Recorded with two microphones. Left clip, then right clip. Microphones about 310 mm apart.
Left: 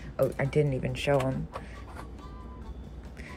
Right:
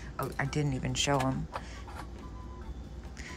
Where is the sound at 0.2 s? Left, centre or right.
Centre.